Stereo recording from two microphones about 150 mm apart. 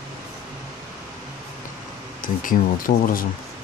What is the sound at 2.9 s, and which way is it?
Speech, 75° left (ahead or behind).